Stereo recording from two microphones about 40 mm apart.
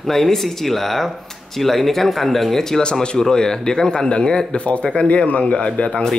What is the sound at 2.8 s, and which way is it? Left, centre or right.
A man's voice, left.